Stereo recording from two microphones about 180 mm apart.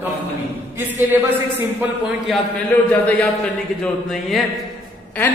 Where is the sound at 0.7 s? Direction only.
10° right (ahead or behind).